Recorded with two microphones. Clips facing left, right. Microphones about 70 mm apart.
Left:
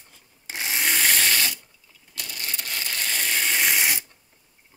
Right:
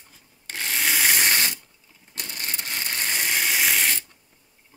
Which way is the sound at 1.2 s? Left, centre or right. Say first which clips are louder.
Right 1 dB; right.